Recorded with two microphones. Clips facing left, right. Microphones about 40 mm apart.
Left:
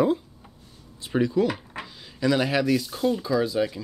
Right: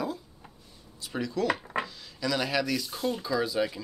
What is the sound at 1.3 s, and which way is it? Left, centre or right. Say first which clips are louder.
Speech: left 1 dB; centre.